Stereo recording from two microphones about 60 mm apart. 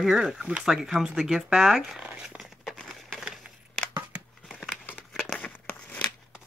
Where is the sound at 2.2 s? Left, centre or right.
Centre.